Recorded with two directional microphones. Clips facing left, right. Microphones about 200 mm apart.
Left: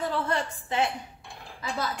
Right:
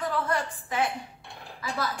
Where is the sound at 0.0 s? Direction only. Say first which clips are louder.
Even; 25° left (ahead or behind).